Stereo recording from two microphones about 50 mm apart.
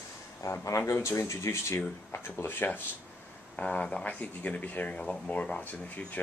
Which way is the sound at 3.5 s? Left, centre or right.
Left.